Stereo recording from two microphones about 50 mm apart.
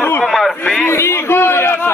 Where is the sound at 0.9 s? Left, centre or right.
Left.